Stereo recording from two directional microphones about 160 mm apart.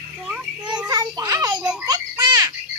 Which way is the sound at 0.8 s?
25° right (ahead or behind).